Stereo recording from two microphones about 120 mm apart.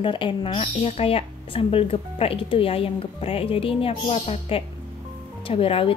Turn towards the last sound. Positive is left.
turn(degrees=50)  # may be behind; listen again after turning